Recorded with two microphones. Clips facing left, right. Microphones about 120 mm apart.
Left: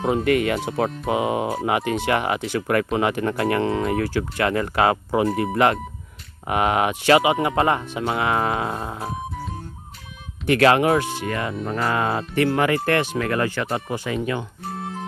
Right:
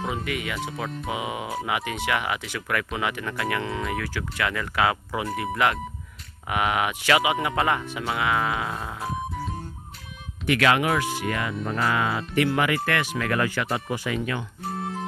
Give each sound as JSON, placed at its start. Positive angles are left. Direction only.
{"t": 0.1, "sound": "speech", "side_deg": 55}
{"t": 0.8, "sound": "speech", "side_deg": 40}
{"t": 10.4, "sound": "speech", "side_deg": 35}
{"t": 14.7, "sound": "music", "side_deg": 0}